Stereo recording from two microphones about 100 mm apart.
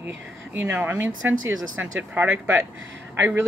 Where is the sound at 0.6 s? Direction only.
15° right (ahead or behind).